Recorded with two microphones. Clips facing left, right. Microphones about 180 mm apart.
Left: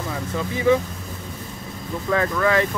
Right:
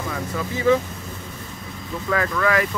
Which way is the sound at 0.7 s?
15° left (ahead or behind).